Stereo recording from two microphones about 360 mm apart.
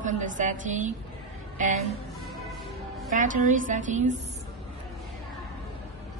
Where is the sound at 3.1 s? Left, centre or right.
Right.